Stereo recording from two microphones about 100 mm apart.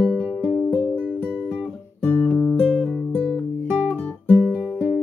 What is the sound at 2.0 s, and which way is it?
Music, 10° left (ahead or behind).